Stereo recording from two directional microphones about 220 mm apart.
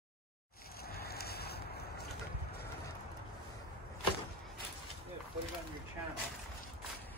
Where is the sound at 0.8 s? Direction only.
45° left (ahead or behind).